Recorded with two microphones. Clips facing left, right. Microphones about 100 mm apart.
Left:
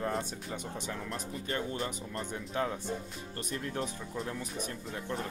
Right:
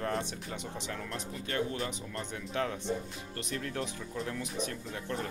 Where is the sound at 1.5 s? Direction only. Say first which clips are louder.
Right 1 dB; 30° left (ahead or behind).